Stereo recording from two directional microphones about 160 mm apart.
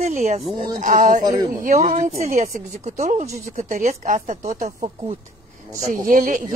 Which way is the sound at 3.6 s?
50° right (ahead or behind).